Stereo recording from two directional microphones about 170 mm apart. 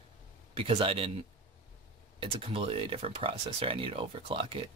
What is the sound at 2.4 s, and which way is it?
Speech, 35° right (ahead or behind).